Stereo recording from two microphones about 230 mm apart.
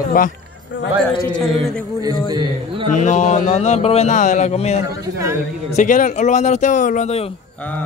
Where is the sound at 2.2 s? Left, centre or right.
Centre.